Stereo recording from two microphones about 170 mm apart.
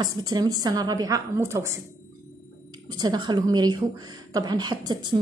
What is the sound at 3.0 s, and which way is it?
A woman's voice, 25° right (ahead or behind).